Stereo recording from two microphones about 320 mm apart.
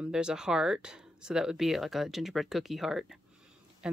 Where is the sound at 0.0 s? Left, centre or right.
Centre.